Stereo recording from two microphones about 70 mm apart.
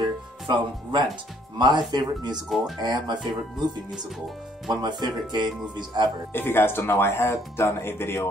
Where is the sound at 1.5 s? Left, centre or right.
Right.